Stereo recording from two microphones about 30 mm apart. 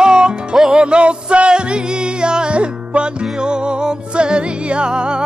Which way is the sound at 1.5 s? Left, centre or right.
Right.